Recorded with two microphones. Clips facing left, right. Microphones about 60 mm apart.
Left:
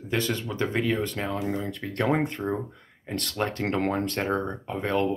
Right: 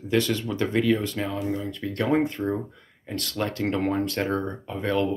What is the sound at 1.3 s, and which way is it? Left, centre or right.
Speech, left.